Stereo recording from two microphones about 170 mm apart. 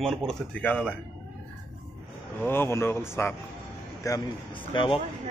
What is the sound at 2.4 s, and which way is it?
Speech, 15° left (ahead or behind).